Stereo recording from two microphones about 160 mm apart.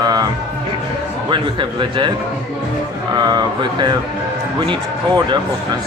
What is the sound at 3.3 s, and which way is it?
Speech, 25° right (ahead or behind).